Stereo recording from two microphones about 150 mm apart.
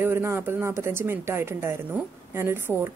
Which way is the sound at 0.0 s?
15° right (ahead or behind).